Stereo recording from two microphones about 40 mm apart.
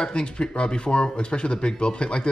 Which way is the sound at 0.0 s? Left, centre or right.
Left.